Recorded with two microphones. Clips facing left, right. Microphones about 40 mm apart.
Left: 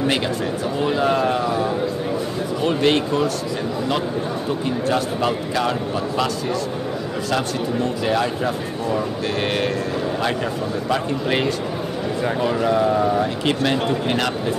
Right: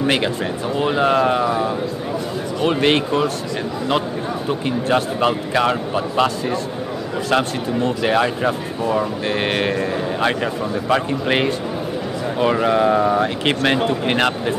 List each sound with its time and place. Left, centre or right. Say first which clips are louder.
0.0 s speech: right 2 dB; right
2.6 s a man's voice: right 2 dB; right
4.6 s a man's voice: right 3 dB; right